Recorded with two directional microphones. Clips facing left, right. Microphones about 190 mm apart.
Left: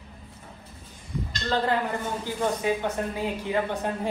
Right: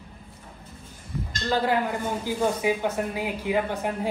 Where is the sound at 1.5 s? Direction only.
10° right (ahead or behind).